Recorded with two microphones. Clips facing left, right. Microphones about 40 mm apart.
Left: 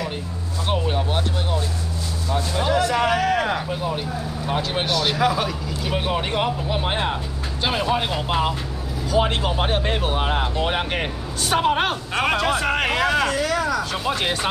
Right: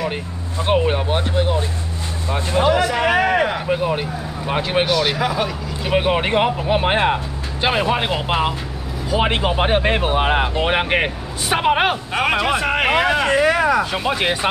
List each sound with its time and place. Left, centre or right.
0.7 s speech: right
2.3 s speech: right
4.8 s speech: centre
5.9 s speech: right; by 12.8 s centre
12.8 s speech: right